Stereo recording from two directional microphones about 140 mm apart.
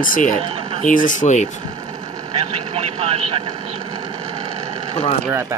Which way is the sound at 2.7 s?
50° right (ahead or behind).